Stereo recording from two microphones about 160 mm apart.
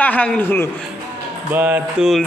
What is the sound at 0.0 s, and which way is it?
Speech, 10° left (ahead or behind).